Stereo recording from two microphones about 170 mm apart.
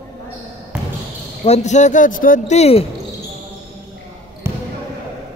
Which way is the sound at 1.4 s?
40° left (ahead or behind).